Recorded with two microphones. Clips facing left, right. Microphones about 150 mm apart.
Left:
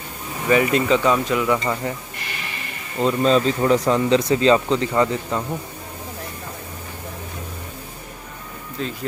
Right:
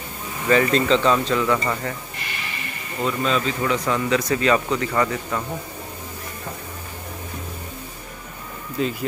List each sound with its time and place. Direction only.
0.5 s speech: 10° left (ahead or behind)
3.0 s speech: 35° left (ahead or behind)
8.8 s speech: 5° right (ahead or behind)